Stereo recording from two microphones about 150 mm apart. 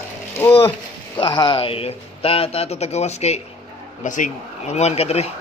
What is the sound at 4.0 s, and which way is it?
Speech, 55° left (ahead or behind).